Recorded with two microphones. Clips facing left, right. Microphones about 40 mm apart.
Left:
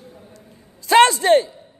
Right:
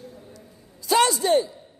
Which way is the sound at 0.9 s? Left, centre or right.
Left.